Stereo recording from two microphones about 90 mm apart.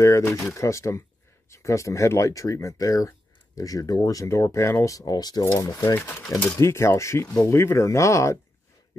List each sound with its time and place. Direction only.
0.0 s speech: 30° left (ahead or behind)
4.7 s speech: 40° left (ahead or behind)
5.5 s speech: 30° left (ahead or behind)